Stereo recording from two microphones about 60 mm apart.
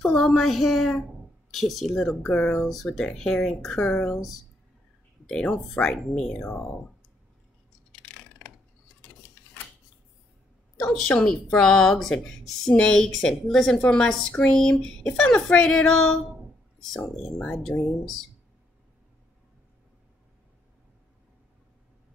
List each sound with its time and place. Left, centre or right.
0.0 s speech: centre
2.0 s speech: centre
2.6 s speech: centre
4.1 s speech: centre
5.3 s speech: centre
7.9 s a sound: centre
11.1 s speech: centre
11.9 s speech: centre
14.3 s speech: left
14.6 s speech: centre
17.6 s speech: centre